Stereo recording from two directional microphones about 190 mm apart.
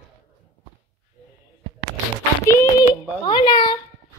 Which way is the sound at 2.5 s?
20° left (ahead or behind).